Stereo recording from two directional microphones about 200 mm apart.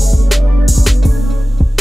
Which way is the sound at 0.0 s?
Centre (ahead or behind).